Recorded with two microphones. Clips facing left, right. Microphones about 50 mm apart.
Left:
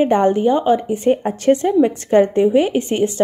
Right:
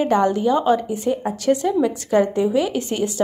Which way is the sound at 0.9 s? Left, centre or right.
Left.